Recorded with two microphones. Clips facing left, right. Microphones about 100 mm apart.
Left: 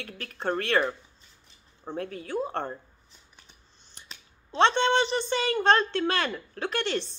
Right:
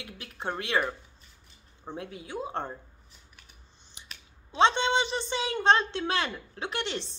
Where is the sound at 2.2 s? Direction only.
15° right (ahead or behind).